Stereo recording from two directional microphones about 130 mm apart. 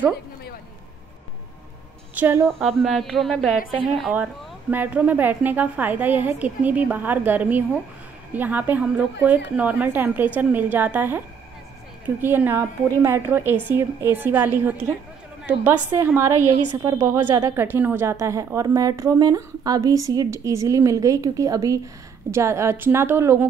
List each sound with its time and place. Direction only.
2.1 s a woman's voice: 15° right (ahead or behind)
2.4 s a woman's voice: centre (ahead or behind); by 23.4 s 20° right (ahead or behind)